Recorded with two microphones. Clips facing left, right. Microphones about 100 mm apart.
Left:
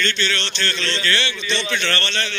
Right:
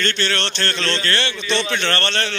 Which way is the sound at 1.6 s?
35° right (ahead or behind).